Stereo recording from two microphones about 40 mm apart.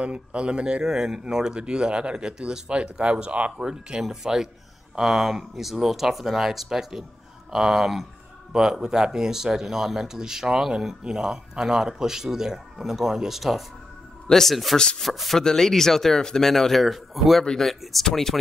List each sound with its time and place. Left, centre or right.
0.0 s speech: right
3.5 s speech: centre
16.8 s speech: centre
17.6 s speech: centre